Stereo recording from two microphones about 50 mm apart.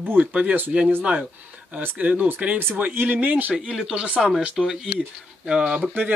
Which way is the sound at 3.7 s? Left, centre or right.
Centre.